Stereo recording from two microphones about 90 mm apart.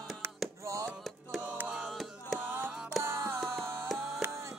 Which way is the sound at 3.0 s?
30° right (ahead or behind).